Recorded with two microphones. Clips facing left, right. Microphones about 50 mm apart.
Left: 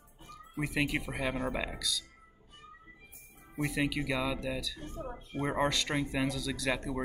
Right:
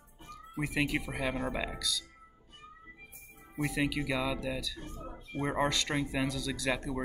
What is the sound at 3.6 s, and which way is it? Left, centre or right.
Speech, centre.